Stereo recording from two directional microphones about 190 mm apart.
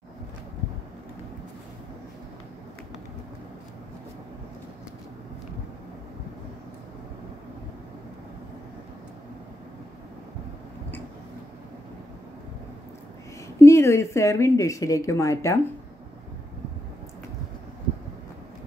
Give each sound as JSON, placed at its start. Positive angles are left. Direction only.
{"t": 13.6, "sound": "speech", "side_deg": 15}